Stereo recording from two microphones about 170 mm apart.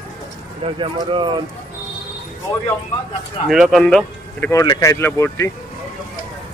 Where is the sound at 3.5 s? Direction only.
Centre (ahead or behind).